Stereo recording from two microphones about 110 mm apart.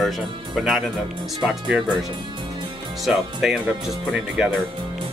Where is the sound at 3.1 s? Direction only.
5° right (ahead or behind).